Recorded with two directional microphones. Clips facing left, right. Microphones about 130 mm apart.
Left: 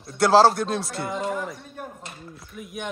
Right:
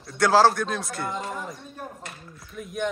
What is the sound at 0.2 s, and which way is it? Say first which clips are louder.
Speech: left 2 dB; 30° left (ahead or behind).